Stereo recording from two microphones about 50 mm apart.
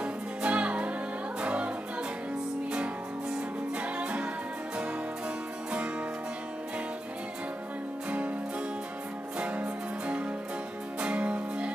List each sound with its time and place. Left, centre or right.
0.0 s music: right
3.7 s music: right
9.4 s music: right